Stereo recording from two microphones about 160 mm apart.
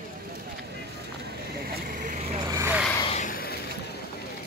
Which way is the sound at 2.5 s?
20° right (ahead or behind).